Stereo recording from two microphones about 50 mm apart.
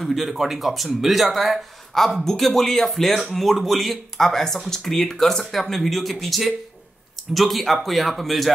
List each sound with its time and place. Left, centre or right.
0.0 s speech: centre